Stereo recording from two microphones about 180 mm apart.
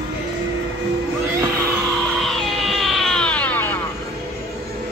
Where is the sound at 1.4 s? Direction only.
15° right (ahead or behind).